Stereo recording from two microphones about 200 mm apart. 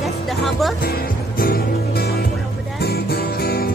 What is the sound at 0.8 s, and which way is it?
Music, 50° left (ahead or behind).